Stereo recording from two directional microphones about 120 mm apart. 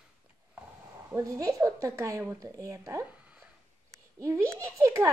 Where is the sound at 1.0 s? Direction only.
25° right (ahead or behind).